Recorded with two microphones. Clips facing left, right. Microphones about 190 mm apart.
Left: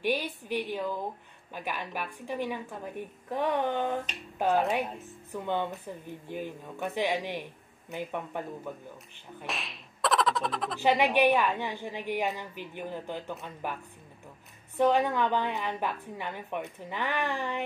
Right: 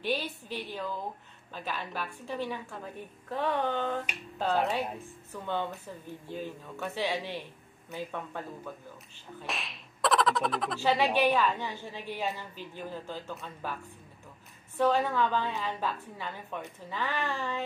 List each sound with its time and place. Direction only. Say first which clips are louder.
0.0 s a woman's voice: left 2 dB; 15° left (ahead or behind)
9.5 s slap: left 1 dB; centre (ahead or behind)
10.8 s a woman's voice: left 2 dB; 15° left (ahead or behind)
14.8 s a woman's voice: left 2 dB; 15° left (ahead or behind)